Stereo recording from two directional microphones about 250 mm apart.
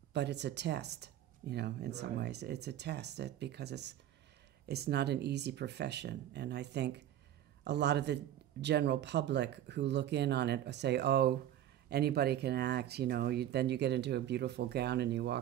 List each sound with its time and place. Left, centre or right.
0.1 s speech: right